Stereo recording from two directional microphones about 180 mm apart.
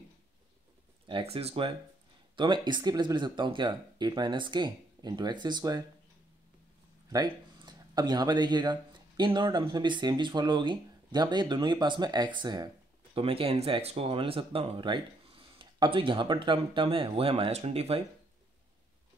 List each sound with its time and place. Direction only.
1.0 s speech: 30° right (ahead or behind)
7.1 s speech: 25° right (ahead or behind)